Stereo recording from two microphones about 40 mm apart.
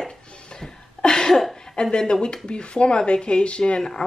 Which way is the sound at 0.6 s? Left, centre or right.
Centre.